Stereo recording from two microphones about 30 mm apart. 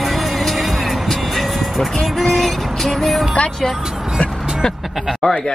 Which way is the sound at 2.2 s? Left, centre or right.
Centre.